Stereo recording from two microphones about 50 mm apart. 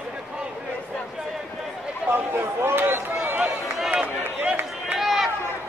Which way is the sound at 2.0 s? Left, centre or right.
Right.